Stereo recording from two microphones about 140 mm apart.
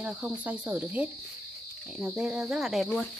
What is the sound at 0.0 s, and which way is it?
Speech, 10° right (ahead or behind).